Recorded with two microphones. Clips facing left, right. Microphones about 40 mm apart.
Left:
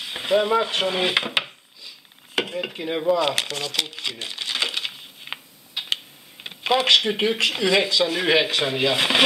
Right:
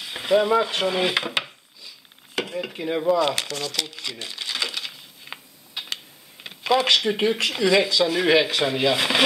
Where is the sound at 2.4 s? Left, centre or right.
Centre.